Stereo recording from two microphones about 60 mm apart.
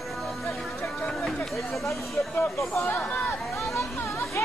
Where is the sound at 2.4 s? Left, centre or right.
Left.